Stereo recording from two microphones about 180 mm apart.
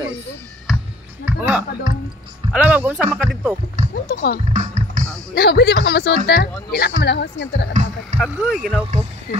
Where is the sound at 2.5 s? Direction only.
10° right (ahead or behind).